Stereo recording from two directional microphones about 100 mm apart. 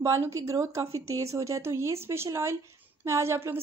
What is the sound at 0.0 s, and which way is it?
A woman's voice, 30° right (ahead or behind).